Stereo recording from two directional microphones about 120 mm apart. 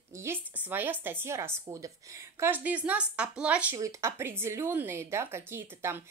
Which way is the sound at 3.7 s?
25° right (ahead or behind).